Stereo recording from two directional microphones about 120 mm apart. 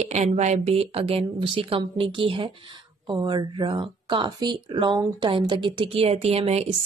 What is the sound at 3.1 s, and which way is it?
Speech, 40° right (ahead or behind).